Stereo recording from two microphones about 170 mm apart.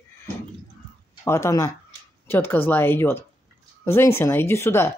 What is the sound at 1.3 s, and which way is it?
Speech, 15° left (ahead or behind).